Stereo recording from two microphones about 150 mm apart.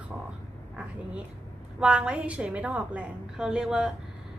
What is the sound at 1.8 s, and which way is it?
A woman's voice, 5° right (ahead or behind).